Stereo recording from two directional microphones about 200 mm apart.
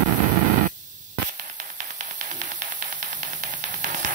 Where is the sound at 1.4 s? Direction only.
35° right (ahead or behind).